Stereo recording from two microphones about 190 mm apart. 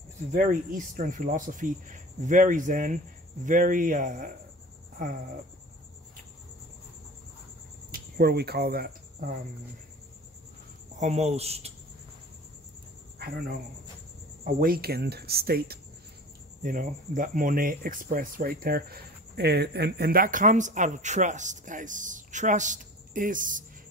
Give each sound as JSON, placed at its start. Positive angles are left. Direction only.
{"t": 0.3, "sound": "speech", "side_deg": -45}
{"t": 4.9, "sound": "a sound", "side_deg": -45}
{"t": 7.9, "sound": "speech", "side_deg": -55}
{"t": 11.0, "sound": "speech", "side_deg": -35}
{"t": 14.4, "sound": "speech", "side_deg": -50}
{"t": 16.6, "sound": "speech", "side_deg": -45}